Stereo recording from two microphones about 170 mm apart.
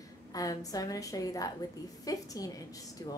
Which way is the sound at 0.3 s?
20° left (ahead or behind).